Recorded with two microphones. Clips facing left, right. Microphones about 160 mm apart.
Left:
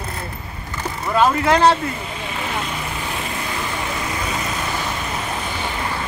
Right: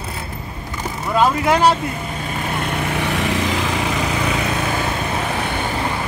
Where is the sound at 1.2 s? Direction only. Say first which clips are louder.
Even; 10° right (ahead or behind).